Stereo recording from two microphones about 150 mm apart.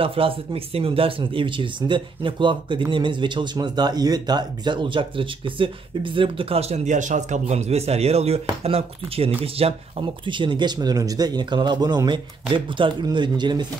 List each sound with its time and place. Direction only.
0.0 s speech: 35° right (ahead or behind)